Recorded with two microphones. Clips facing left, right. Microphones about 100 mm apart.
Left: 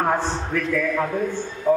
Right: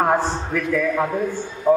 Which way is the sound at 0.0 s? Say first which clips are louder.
Right 3 dB; 15° right (ahead or behind).